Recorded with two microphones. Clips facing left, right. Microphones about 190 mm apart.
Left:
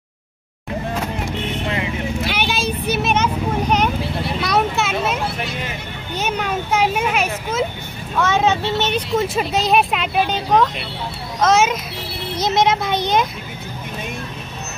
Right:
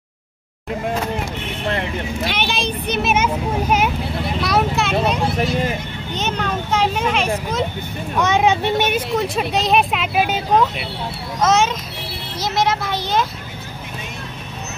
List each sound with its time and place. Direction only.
2.2 s a sound: 5° left (ahead or behind)
8.2 s speech: 15° right (ahead or behind)
9.1 s speech: centre (ahead or behind)
11.4 s speech: 5° left (ahead or behind)
12.4 s speech: 20° left (ahead or behind)